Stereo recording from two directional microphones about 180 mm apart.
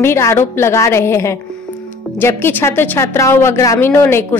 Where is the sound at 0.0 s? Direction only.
15° left (ahead or behind).